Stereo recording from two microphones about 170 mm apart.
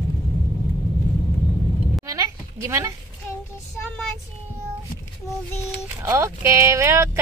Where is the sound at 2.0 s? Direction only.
20° right (ahead or behind).